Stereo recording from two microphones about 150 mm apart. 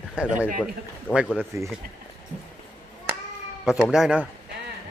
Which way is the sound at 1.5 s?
20° right (ahead or behind).